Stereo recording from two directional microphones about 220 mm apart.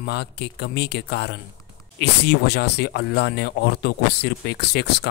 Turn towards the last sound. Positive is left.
turn(degrees=50)  # may be behind; listen again after turning